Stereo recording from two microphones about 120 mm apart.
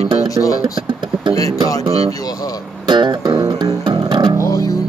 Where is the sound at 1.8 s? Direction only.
60° right (ahead or behind).